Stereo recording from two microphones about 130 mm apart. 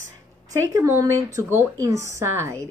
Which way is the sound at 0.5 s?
20° right (ahead or behind).